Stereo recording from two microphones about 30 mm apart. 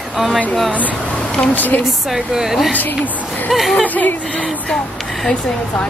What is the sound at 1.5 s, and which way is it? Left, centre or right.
Speech, left.